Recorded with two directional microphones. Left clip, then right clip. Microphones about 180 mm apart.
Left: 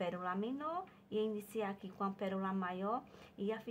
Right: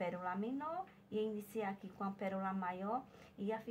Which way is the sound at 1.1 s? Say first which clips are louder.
Left 2 dB; 20° left (ahead or behind).